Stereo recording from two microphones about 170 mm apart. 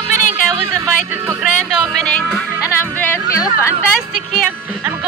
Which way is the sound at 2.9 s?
10° left (ahead or behind).